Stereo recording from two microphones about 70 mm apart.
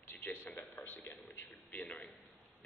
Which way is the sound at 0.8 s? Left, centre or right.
Left.